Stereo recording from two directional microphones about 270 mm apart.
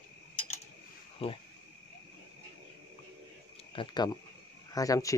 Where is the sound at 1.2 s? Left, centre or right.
Left.